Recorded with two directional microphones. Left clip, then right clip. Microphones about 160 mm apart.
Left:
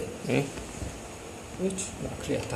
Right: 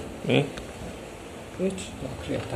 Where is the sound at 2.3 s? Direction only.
20° left (ahead or behind).